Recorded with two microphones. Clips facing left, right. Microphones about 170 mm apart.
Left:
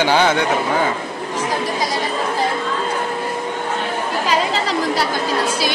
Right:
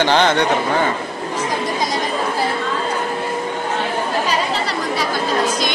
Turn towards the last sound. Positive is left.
turn(degrees=90)